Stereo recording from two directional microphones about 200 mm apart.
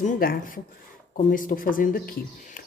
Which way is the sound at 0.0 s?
45° left (ahead or behind).